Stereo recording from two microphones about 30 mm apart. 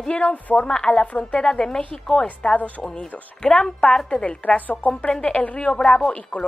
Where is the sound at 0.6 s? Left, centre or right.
Left.